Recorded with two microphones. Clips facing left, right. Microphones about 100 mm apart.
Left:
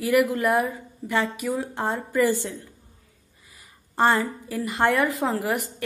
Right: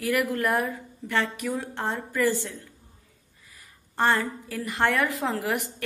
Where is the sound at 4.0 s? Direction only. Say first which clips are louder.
Left 3 dB; 10° left (ahead or behind).